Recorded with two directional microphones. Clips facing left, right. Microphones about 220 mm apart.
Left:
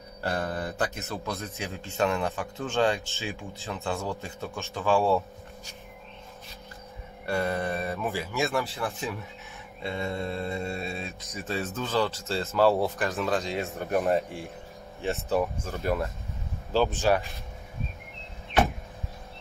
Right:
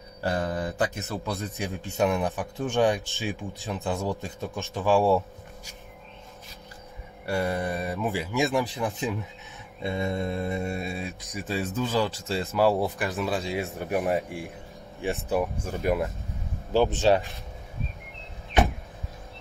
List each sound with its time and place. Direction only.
0.2 s speech: 15° right (ahead or behind)
7.2 s speech: 10° right (ahead or behind)